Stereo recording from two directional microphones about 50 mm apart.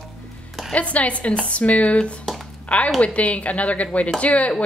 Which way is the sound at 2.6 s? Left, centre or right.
Left.